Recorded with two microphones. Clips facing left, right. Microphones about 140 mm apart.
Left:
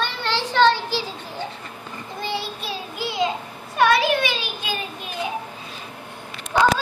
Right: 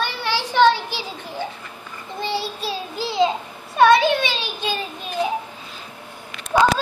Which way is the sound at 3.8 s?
25° right (ahead or behind).